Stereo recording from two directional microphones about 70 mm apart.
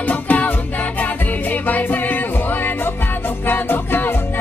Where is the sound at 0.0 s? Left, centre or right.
Left.